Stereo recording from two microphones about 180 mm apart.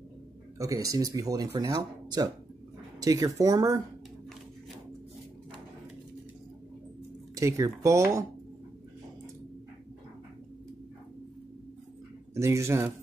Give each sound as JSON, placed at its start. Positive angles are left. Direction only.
{"t": 0.6, "sound": "speech", "side_deg": -20}
{"t": 7.3, "sound": "speech", "side_deg": -15}
{"t": 12.4, "sound": "speech", "side_deg": -15}